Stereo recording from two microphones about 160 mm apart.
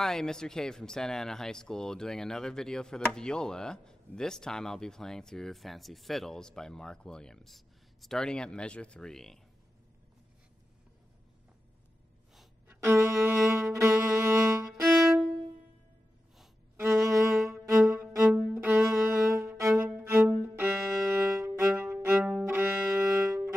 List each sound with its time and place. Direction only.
0.0 s speech: 5° left (ahead or behind)
12.6 s music: 15° right (ahead or behind)
17.0 s music: 20° right (ahead or behind)